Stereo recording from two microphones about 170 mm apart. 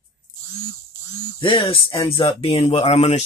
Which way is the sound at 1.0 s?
25° left (ahead or behind).